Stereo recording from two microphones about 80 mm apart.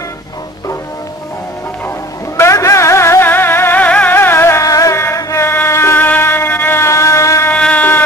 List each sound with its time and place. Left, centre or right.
2.3 s music: left
4.6 s music: left
7.5 s a sound: centre